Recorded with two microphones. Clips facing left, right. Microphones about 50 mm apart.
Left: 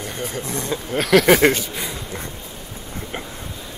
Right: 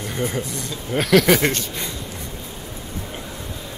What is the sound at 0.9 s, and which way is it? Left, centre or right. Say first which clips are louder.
Speech: left 1 dB; centre.